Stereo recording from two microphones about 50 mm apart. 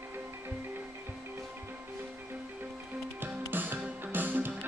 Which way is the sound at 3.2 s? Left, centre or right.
Right.